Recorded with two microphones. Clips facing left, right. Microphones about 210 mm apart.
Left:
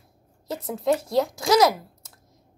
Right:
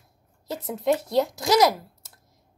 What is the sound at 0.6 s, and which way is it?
Speech, 25° right (ahead or behind).